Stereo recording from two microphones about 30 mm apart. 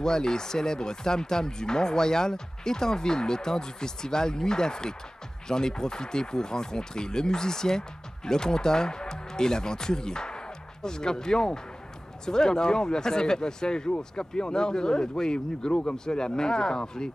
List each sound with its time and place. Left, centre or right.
0.0 s speech: left